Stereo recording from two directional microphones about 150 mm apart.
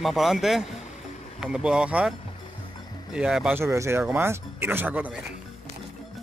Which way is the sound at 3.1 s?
5° right (ahead or behind).